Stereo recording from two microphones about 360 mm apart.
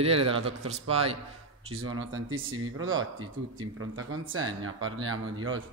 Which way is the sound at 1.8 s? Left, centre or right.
Right.